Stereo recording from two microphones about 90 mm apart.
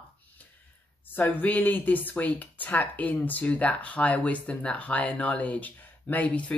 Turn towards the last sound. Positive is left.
turn(degrees=15)  # may be behind; listen again after turning